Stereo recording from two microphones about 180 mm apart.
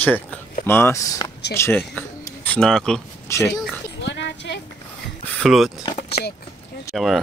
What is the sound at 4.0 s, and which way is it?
Oink, 75° left (ahead or behind).